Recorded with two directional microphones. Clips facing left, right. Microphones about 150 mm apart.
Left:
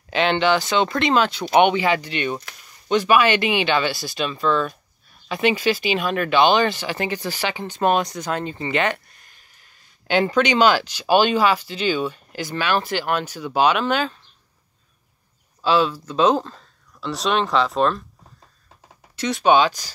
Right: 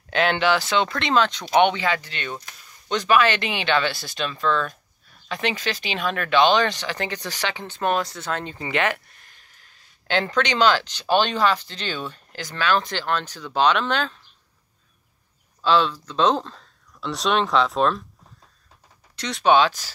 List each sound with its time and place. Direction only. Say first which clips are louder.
0.1 s speech: left 2 dB; centre (ahead or behind)
7.8 s speech: left 4 dB; 20° left (ahead or behind)
8.5 s speech: even; centre (ahead or behind)
10.0 s speech: left 4 dB; 10° left (ahead or behind)
15.6 s speech: left 1 dB; 5° left (ahead or behind)
19.1 s speech: left 1 dB; 5° left (ahead or behind)